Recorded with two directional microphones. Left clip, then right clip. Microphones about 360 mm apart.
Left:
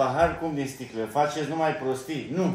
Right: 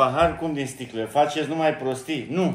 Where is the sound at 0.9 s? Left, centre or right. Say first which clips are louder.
Right 4 dB; centre.